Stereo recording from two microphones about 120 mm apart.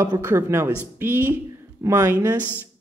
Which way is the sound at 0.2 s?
20° right (ahead or behind).